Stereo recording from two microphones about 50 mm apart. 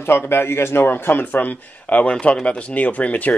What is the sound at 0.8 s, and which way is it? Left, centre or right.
Speech, left.